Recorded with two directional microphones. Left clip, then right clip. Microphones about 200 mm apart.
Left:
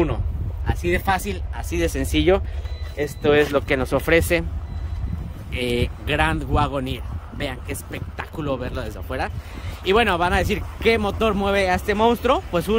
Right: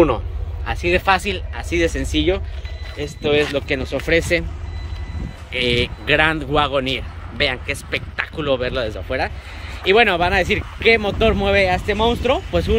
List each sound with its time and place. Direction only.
0.8 s speech: 5° right (ahead or behind); by 4.5 s 10° left (ahead or behind)
5.5 s speech: centre (ahead or behind)